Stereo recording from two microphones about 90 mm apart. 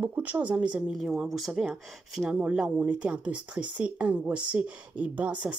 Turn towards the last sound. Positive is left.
turn(degrees=-15)  # may be behind; listen again after turning